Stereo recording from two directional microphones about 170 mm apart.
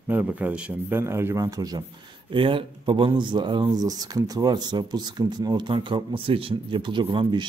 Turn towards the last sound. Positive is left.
turn(degrees=-30)  # may be behind; listen again after turning